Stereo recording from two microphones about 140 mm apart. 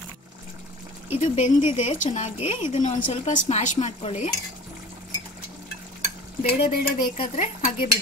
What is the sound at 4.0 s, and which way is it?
Speech, 45° left (ahead or behind).